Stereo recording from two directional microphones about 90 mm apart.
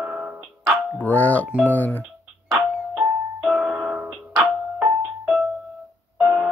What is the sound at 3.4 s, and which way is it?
Music, 5° right (ahead or behind).